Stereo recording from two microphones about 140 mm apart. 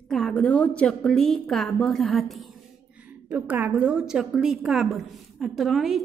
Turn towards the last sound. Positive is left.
turn(degrees=0)  # may be behind; listen again after turning